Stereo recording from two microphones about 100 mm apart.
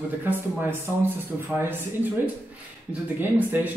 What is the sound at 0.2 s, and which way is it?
Speech, 20° right (ahead or behind).